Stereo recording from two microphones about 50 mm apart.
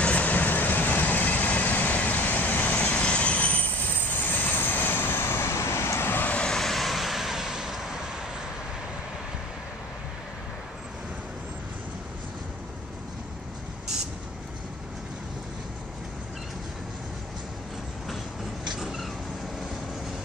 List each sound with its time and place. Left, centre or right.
0.0 s vehicle: left
6.0 s vehicle: left
6.3 s vehicle: centre
6.6 s vehicle: centre
18.8 s vehicle: centre